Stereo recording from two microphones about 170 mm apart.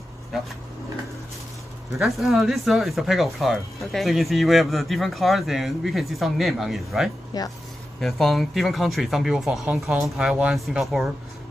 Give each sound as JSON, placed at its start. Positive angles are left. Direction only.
{"t": 2.0, "sound": "speech", "side_deg": 0}
{"t": 7.3, "sound": "speech", "side_deg": 20}
{"t": 8.0, "sound": "speech", "side_deg": 0}